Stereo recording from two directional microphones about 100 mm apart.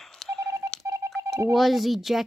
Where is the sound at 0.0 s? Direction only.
5° left (ahead or behind).